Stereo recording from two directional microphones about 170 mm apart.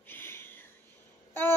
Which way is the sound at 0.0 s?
15° left (ahead or behind).